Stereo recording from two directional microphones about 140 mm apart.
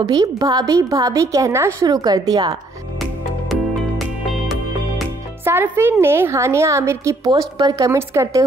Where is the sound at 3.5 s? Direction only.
Centre (ahead or behind).